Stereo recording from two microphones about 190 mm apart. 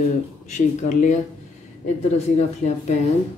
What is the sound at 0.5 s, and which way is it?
Speech, 40° left (ahead or behind).